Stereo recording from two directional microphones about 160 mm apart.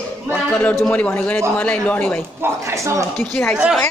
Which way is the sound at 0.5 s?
5° left (ahead or behind).